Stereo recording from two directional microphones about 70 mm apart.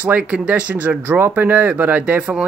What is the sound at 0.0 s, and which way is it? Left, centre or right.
Speech, right.